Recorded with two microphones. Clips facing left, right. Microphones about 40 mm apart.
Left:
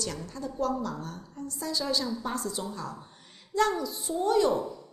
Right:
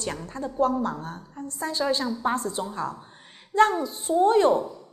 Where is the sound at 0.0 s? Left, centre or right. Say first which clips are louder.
Right 4 dB; right.